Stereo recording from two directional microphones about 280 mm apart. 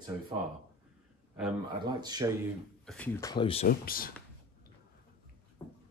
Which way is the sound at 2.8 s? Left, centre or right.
Centre.